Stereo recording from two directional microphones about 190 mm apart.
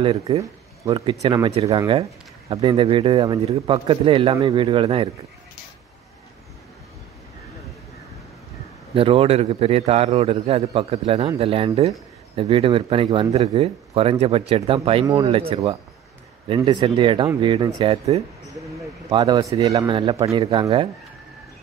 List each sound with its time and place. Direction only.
0.0 s a man's voice: 30° right (ahead or behind)
8.9 s a man's voice: 30° right (ahead or behind)